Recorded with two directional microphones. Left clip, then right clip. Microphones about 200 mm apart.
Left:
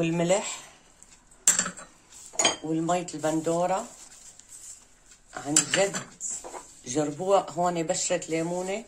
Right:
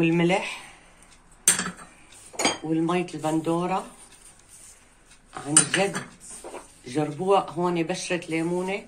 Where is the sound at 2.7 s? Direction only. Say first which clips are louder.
Right 2 dB; 55° left (ahead or behind).